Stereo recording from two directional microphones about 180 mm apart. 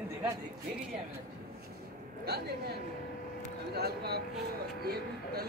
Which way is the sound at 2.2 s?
65° right (ahead or behind).